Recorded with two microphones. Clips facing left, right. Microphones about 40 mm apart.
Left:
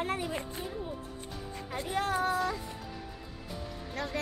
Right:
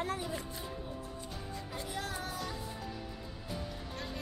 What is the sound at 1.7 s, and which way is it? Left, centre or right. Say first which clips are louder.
Speech: left 10 dB; left.